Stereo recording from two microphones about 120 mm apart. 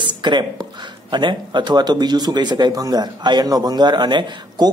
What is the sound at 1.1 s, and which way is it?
Speech, 40° right (ahead or behind).